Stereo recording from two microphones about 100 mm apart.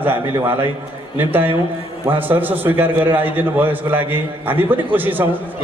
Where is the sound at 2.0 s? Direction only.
20° right (ahead or behind).